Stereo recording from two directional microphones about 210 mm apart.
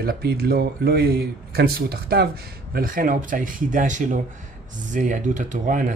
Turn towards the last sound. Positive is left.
turn(degrees=-40)  # may be behind; listen again after turning